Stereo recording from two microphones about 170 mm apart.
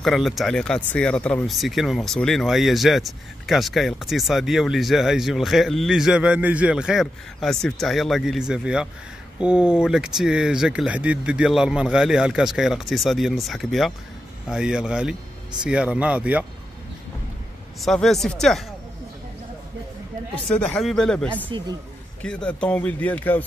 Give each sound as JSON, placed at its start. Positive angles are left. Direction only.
{"t": 0.0, "sound": "speech", "side_deg": 0}
{"t": 17.8, "sound": "speech", "side_deg": 0}
{"t": 20.5, "sound": "speech", "side_deg": 5}
{"t": 21.5, "sound": "speech", "side_deg": -30}
{"t": 22.2, "sound": "a man's voice", "side_deg": 5}